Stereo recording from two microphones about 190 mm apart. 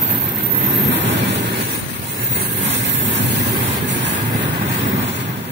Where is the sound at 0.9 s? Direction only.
70° right (ahead or behind).